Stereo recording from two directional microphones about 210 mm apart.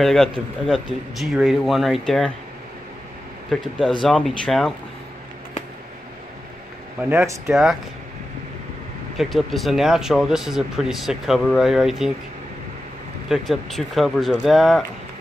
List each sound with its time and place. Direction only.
0.0 s speech: centre (ahead or behind)
4.0 s speech: centre (ahead or behind)
7.1 s speech: 10° right (ahead or behind)
9.1 s speech: centre (ahead or behind)
13.3 s speech: centre (ahead or behind)